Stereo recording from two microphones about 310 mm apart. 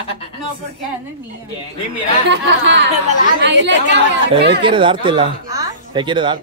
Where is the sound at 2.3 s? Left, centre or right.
Right.